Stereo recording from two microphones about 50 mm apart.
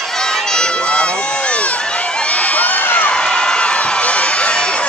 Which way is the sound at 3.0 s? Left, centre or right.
Centre.